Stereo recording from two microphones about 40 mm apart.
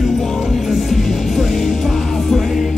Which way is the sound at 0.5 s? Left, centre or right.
Centre.